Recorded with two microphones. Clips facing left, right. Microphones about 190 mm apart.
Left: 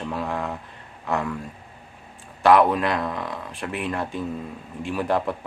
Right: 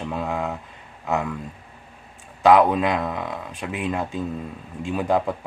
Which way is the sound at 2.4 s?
15° right (ahead or behind).